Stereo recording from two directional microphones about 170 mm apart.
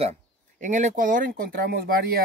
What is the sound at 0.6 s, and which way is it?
Speech, 45° right (ahead or behind).